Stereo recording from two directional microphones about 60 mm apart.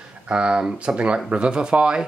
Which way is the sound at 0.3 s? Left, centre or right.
Centre.